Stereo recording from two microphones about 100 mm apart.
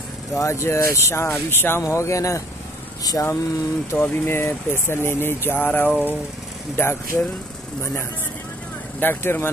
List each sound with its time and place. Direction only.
0.3 s speech: 30° left (ahead or behind)
3.9 s speech: 20° left (ahead or behind)
5.5 s a sound: 20° left (ahead or behind)
6.8 s speech: 25° left (ahead or behind)
9.0 s speech: 20° left (ahead or behind)